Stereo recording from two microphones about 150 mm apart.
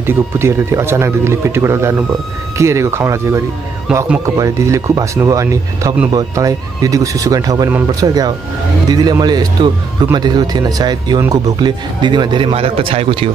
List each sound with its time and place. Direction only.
0.0 s speech: 15° right (ahead or behind)
3.9 s speech: 5° right (ahead or behind)
4.4 s speech: 20° right (ahead or behind); by 13.3 s 40° right (ahead or behind)